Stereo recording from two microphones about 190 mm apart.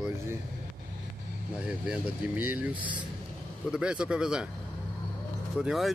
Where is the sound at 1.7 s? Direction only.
5° right (ahead or behind).